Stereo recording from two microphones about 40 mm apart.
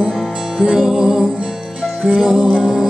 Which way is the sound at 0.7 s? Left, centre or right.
Centre.